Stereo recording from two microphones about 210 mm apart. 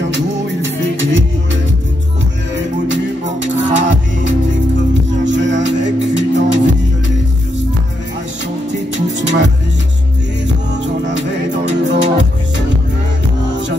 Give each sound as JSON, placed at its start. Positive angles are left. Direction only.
{"t": 0.1, "sound": "music", "side_deg": -60}
{"t": 3.4, "sound": "music", "side_deg": -60}
{"t": 8.9, "sound": "music", "side_deg": -60}
{"t": 11.1, "sound": "music", "side_deg": -55}